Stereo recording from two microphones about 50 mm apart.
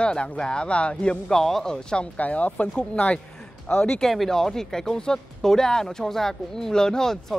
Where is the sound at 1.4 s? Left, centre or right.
Centre.